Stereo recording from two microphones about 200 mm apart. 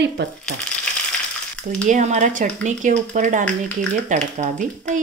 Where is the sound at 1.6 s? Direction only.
40° right (ahead or behind).